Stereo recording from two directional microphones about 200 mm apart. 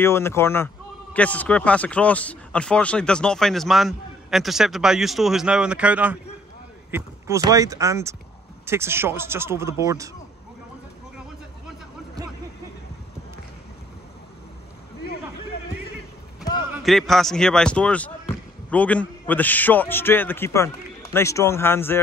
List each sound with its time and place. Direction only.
0.0 s a man's voice: 10° left (ahead or behind); by 10.1 s 15° right (ahead or behind)
16.7 s a man's voice: centre (ahead or behind)